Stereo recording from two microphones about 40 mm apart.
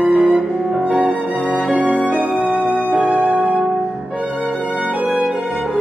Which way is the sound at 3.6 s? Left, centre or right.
Right.